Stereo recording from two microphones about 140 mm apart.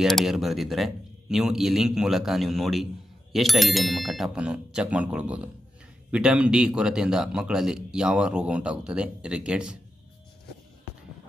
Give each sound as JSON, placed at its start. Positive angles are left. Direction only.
{"t": 0.0, "sound": "a man's voice", "side_deg": 0}